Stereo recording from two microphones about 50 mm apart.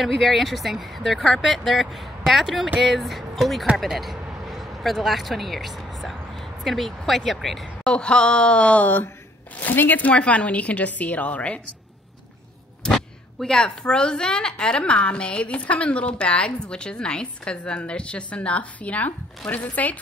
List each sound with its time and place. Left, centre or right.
0.0 s speech: centre
7.8 s a woman's voice: centre
12.8 s a sound: centre
13.7 s a woman's voice: centre